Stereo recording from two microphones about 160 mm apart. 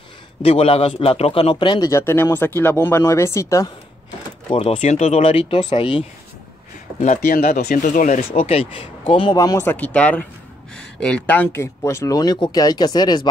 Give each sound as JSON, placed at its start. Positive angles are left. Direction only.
{"t": 0.4, "sound": "a man's voice", "side_deg": 40}
{"t": 4.5, "sound": "speech", "side_deg": 40}
{"t": 7.2, "sound": "speech", "side_deg": 75}
{"t": 7.4, "sound": "speech", "side_deg": 60}
{"t": 8.2, "sound": "speech", "side_deg": 40}
{"t": 9.4, "sound": "a man's voice", "side_deg": 20}